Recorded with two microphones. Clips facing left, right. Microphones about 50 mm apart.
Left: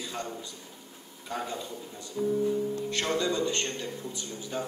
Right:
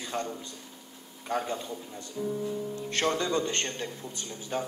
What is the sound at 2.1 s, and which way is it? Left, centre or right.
Speech, centre.